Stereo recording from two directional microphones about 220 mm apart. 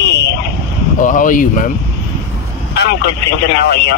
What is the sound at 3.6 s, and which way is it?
Speech, 50° left (ahead or behind).